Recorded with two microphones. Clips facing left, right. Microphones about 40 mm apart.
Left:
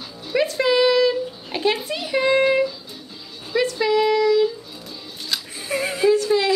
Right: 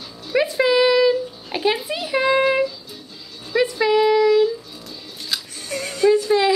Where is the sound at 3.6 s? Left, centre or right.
Centre.